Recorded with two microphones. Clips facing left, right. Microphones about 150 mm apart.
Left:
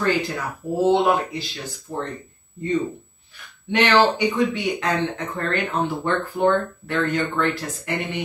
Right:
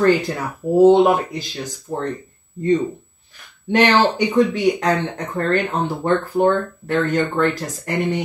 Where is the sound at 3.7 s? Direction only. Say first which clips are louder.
Right 2 dB; 45° right (ahead or behind).